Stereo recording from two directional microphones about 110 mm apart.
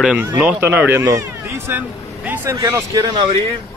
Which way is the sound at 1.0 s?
30° right (ahead or behind).